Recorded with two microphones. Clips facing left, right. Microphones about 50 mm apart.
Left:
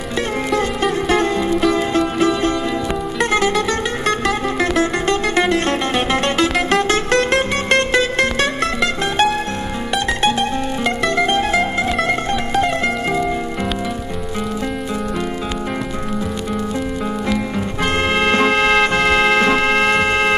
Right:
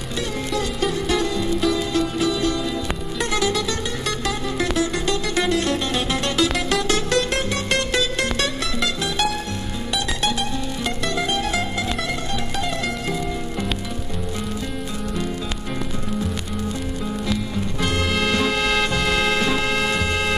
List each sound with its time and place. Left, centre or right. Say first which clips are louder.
1.0 s music: left 5 dB; left
11.1 s music: left 6 dB; left
17.9 s music: left 6 dB; left